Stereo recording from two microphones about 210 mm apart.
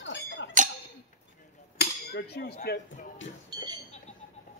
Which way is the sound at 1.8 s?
50° left (ahead or behind).